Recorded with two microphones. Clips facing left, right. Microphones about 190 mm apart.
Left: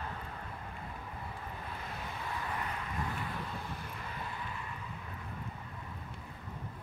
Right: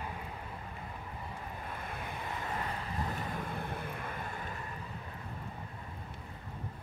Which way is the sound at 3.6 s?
55° right (ahead or behind).